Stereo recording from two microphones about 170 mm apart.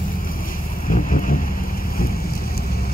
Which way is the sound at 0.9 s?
55° left (ahead or behind).